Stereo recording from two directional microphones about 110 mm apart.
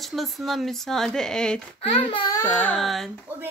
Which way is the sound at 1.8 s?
50° left (ahead or behind).